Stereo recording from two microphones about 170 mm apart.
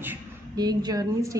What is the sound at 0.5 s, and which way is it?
Speech, 25° right (ahead or behind).